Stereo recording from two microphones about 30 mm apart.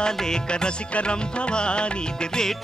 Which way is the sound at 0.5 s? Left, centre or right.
Left.